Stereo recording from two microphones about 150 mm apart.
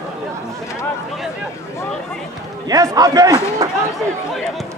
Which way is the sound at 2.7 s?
25° right (ahead or behind).